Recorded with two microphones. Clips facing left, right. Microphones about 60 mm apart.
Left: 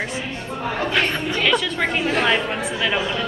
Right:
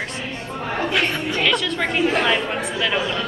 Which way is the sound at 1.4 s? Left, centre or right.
Centre.